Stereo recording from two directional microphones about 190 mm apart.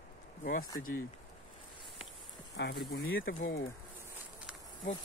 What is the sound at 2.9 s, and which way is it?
Speech, 50° left (ahead or behind).